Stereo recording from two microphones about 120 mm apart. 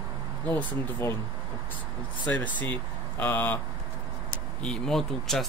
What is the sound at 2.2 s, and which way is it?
Speech, 15° left (ahead or behind).